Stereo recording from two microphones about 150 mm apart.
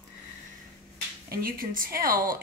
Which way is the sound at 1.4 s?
75° right (ahead or behind).